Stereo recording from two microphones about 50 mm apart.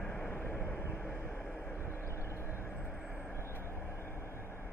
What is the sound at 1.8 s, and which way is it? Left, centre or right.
Vehicle, left.